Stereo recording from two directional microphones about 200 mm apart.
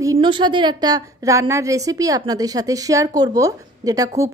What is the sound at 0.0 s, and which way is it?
Speech, 20° right (ahead or behind).